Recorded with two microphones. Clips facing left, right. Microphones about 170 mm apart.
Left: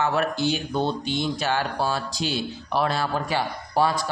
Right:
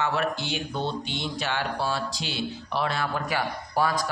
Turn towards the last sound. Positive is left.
turn(degrees=30)  # may be behind; listen again after turning